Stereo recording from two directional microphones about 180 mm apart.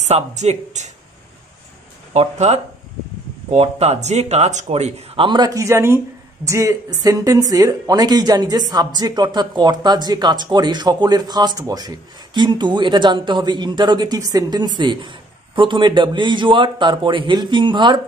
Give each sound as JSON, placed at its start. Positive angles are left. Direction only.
{"t": 0.0, "sound": "speech", "side_deg": -40}
{"t": 2.1, "sound": "speech", "side_deg": -35}